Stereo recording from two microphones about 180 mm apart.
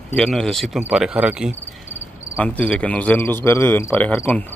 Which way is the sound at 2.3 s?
10° left (ahead or behind).